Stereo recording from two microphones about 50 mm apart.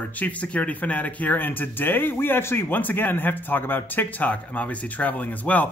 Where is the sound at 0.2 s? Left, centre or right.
Left.